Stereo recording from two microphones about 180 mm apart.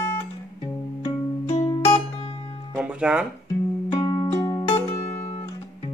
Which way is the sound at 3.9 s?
20° left (ahead or behind).